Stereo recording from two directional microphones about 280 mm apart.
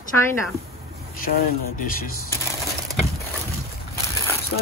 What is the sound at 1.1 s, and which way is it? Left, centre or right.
Speech, left.